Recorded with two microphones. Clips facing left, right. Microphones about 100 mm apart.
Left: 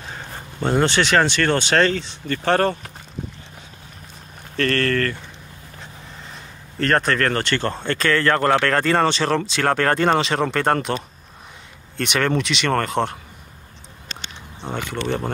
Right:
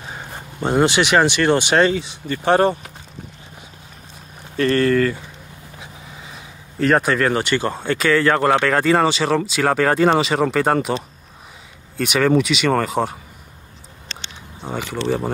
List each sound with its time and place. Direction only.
0.1 s speech: 15° right (ahead or behind)
4.6 s speech: 10° right (ahead or behind)
12.0 s speech: 5° right (ahead or behind)
14.6 s a sound: 5° right (ahead or behind)
15.0 s speech: 5° right (ahead or behind)